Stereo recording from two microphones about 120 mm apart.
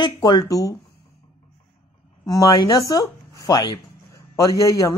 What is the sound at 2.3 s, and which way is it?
Speech, 35° left (ahead or behind).